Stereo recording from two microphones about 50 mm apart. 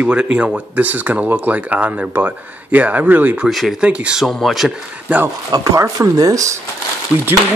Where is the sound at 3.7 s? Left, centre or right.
Right.